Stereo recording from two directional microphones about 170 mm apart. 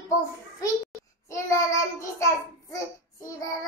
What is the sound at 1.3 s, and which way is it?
Child singing, 15° left (ahead or behind).